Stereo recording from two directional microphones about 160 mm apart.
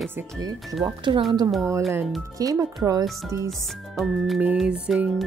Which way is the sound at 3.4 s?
Centre (ahead or behind).